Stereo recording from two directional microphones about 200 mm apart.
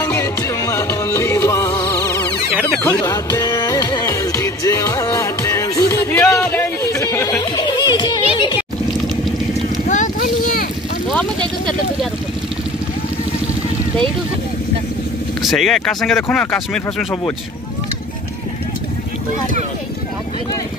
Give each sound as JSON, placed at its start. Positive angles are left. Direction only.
{"t": 0.0, "sound": "music", "side_deg": 15}
{"t": 7.5, "sound": "music", "side_deg": 20}
{"t": 9.8, "sound": "a sound", "side_deg": 40}
{"t": 15.4, "sound": "speech", "side_deg": 0}